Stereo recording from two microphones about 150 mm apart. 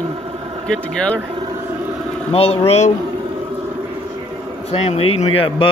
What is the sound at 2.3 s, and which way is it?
Speech, 40° left (ahead or behind).